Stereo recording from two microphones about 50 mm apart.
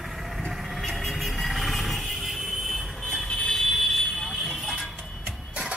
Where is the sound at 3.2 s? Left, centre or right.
Centre.